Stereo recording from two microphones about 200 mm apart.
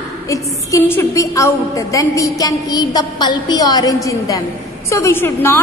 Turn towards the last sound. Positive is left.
turn(degrees=10)  # may be behind; listen again after turning